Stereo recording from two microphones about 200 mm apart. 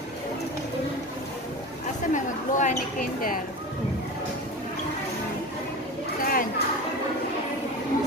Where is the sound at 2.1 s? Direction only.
40° left (ahead or behind).